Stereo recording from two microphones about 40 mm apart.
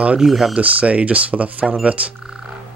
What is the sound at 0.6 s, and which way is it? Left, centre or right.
Speech, right.